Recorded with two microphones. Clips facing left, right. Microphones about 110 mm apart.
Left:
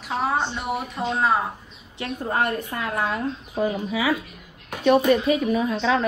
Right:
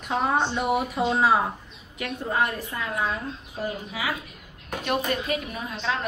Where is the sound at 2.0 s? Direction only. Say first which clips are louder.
Left 2 dB; 30° left (ahead or behind).